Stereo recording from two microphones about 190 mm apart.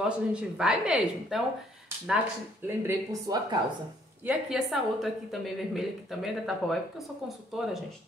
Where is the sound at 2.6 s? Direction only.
15° right (ahead or behind).